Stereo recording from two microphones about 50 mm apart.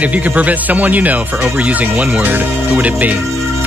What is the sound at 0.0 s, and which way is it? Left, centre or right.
Speech, right.